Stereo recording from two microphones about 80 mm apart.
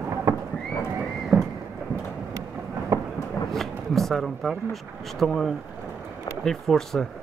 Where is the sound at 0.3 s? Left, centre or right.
Right.